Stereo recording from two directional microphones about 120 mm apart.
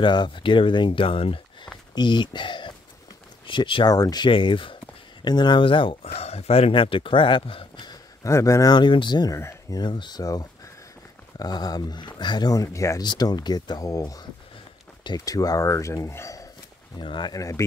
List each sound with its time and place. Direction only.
0.0 s speech: 40° left (ahead or behind)
3.9 s speech: 30° left (ahead or behind)
8.3 s speech: 25° left (ahead or behind)
9.4 s speech: 25° left (ahead or behind)
9.8 s speech: 40° left (ahead or behind)
13.0 s speech: 35° left (ahead or behind)
17.0 s speech: 40° left (ahead or behind)
17.4 s speech: 25° left (ahead or behind)